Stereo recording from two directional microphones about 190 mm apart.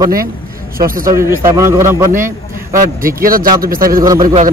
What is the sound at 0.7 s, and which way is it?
Speech, 50° right (ahead or behind).